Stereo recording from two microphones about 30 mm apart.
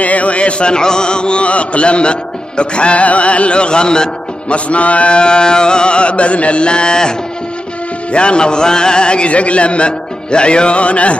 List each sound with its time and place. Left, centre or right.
0.0 s mantra: left
4.5 s music: left
5.2 s mantra: left